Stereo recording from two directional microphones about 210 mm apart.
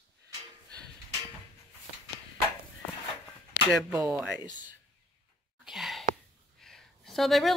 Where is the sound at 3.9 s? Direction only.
10° right (ahead or behind).